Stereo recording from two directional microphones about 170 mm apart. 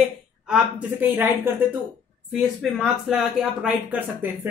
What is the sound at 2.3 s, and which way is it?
Speech, centre (ahead or behind).